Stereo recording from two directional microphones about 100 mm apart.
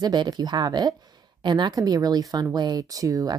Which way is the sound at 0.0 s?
45° right (ahead or behind).